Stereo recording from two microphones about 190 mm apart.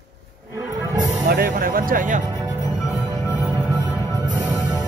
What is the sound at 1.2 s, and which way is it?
Speech, 50° right (ahead or behind).